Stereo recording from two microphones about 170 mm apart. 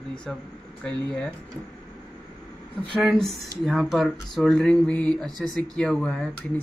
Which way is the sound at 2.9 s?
Centre (ahead or behind).